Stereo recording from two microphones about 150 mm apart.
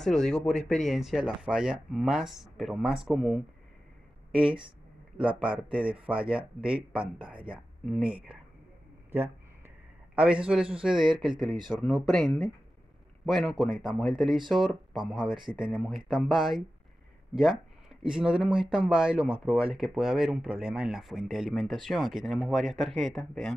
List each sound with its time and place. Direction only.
0.0 s speech: 5° left (ahead or behind)
5.1 s speech: 10° right (ahead or behind)
10.1 s speech: 5° right (ahead or behind)
11.3 s speech: 30° right (ahead or behind)
11.8 s speech: centre (ahead or behind)